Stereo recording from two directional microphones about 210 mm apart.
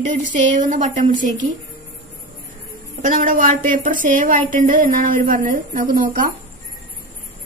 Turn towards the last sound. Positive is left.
turn(degrees=-40)  # may be behind; listen again after turning